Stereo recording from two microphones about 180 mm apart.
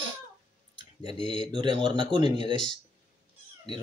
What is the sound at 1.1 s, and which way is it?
Speech, 25° right (ahead or behind).